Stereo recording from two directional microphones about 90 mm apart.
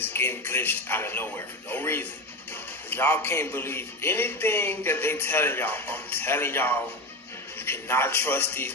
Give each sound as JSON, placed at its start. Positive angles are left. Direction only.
{"t": 0.0, "sound": "a man's voice", "side_deg": 20}